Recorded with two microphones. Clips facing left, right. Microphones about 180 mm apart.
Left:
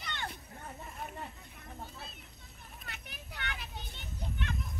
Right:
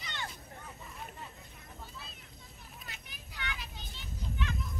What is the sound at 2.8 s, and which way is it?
Children playing, 60° left (ahead or behind).